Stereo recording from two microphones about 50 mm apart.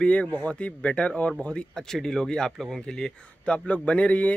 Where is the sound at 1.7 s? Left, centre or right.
Centre.